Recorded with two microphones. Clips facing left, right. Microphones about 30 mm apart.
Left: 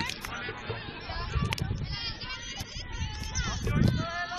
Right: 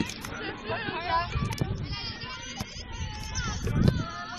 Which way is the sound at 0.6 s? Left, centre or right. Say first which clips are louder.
Right 8 dB; right.